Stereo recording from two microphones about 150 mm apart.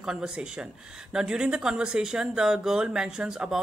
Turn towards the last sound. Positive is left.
turn(degrees=-5)  # may be behind; listen again after turning